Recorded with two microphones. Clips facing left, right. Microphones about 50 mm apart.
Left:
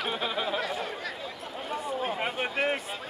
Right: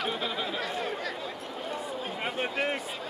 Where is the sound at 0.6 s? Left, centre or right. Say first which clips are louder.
Even; centre.